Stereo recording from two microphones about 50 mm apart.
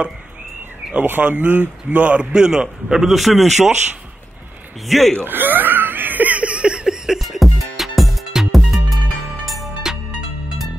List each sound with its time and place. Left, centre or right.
1.0 s speech: right
2.3 s a man's voice: centre
4.8 s a man's voice: centre
5.1 s wheeze: right; by 8.8 s centre
9.8 s music: centre